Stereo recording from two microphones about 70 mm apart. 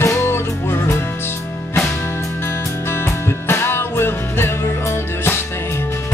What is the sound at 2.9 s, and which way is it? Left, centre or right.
Music, left.